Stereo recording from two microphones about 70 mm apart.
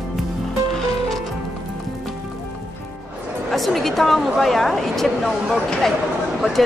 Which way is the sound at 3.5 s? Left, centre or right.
Centre.